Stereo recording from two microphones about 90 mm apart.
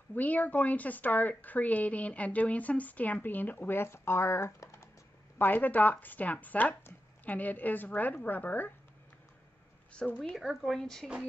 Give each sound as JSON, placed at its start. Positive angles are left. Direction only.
{"t": 0.1, "sound": "speech", "side_deg": 20}
{"t": 5.4, "sound": "speech", "side_deg": 20}
{"t": 9.9, "sound": "speech", "side_deg": 10}